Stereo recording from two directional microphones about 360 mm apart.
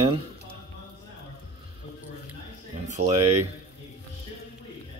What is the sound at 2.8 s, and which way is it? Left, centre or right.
Speech, centre.